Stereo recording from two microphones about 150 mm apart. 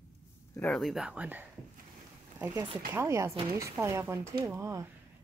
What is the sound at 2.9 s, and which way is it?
Speech, 20° right (ahead or behind).